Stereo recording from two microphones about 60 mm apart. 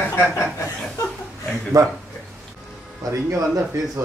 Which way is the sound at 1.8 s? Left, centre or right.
Right.